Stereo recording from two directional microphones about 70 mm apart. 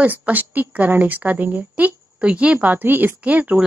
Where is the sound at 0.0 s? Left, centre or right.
Right.